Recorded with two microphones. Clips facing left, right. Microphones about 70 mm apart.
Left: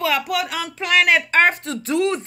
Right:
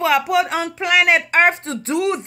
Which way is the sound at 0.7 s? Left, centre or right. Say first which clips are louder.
Right 1 dB; centre.